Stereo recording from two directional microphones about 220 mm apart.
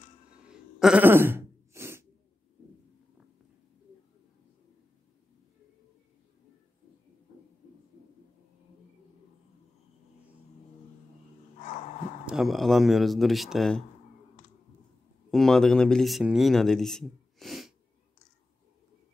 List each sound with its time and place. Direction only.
0.7 s a sound: 5° right (ahead or behind)
11.6 s dog: 35° left (ahead or behind)
12.3 s speech: centre (ahead or behind)
15.3 s speech: centre (ahead or behind)